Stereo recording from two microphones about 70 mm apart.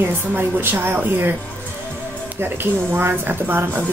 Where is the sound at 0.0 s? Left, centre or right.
Right.